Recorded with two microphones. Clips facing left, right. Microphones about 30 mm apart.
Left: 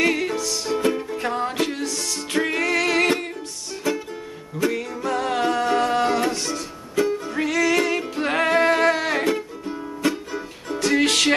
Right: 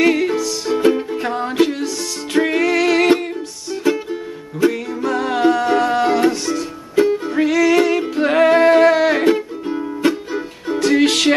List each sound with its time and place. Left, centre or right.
0.0 s music: centre
0.7 s music: centre
3.8 s music: centre
7.0 s music: right
7.3 s music: centre
10.9 s music: centre